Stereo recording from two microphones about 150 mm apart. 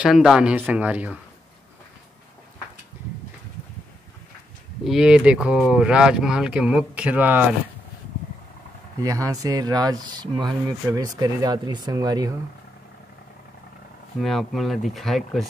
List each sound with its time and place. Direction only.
0.0 s speech: 5° right (ahead or behind)
4.8 s speech: 5° right (ahead or behind)
9.0 s speech: 20° right (ahead or behind)
14.2 s speech: centre (ahead or behind)